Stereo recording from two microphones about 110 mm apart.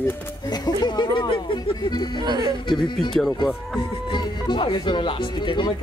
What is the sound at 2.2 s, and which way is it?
Speech, 40° right (ahead or behind).